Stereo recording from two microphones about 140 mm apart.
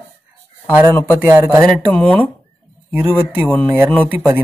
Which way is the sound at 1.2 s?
10° right (ahead or behind).